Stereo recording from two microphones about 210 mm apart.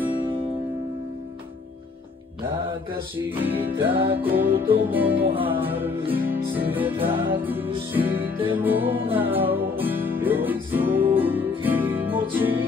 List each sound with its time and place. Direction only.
0.0 s music: 10° right (ahead or behind)
3.2 s music: 10° right (ahead or behind)
4.6 s music: 25° right (ahead or behind)
4.8 s music: 10° right (ahead or behind)
5.2 s music: 25° right (ahead or behind)
5.5 s music: 10° right (ahead or behind)